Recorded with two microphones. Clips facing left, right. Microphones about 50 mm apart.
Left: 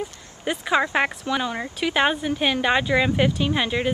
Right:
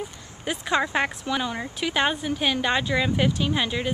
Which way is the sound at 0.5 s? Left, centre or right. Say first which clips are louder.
Left 3 dB; centre.